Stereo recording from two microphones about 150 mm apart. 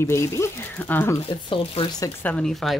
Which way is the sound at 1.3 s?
35° left (ahead or behind).